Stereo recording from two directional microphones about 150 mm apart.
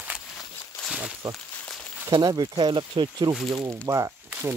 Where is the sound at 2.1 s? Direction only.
25° right (ahead or behind).